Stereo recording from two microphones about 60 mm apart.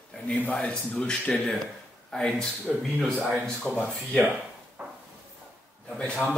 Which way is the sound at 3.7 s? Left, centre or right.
Centre.